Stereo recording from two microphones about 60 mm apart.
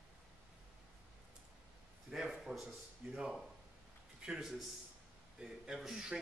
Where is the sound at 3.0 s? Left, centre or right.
Right.